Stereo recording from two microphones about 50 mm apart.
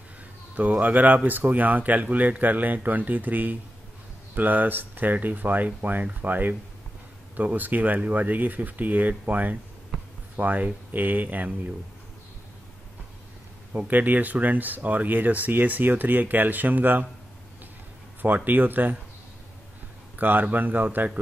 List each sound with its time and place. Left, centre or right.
0.6 s speech: right
13.7 s speech: right
18.2 s speech: right
20.2 s speech: right